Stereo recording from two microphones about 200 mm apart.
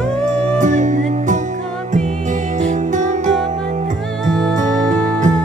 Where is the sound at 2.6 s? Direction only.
35° right (ahead or behind).